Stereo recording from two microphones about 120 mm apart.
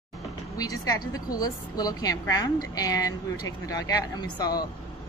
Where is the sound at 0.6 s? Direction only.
30° left (ahead or behind).